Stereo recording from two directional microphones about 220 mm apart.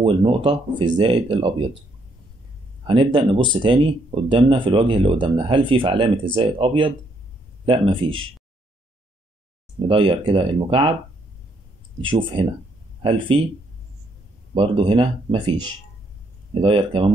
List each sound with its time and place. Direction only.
0.0 s speech: 25° right (ahead or behind)
2.9 s speech: 20° right (ahead or behind)
9.8 s speech: 25° right (ahead or behind)
12.0 s speech: 25° right (ahead or behind)
14.5 s speech: 25° right (ahead or behind)